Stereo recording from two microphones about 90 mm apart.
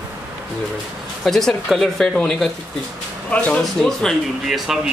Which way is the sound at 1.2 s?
5° left (ahead or behind).